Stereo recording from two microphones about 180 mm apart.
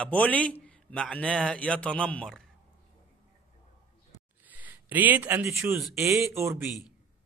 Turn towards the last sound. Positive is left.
turn(degrees=-15)  # may be behind; listen again after turning